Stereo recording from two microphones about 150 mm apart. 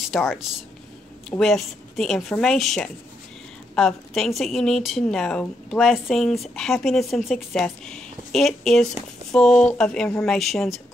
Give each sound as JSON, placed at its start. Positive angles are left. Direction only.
{"t": 0.1, "sound": "a woman's voice", "side_deg": 5}
{"t": 1.4, "sound": "a woman's voice", "side_deg": 0}